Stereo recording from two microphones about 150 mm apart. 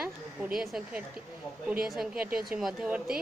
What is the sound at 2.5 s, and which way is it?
Speech, 5° right (ahead or behind).